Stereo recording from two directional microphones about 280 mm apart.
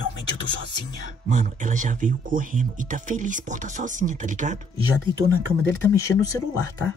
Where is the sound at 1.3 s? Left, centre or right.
Right.